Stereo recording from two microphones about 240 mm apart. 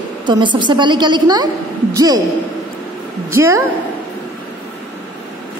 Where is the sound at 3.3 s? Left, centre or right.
Centre.